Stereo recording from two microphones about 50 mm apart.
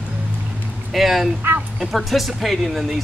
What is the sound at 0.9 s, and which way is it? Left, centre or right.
Speech, centre.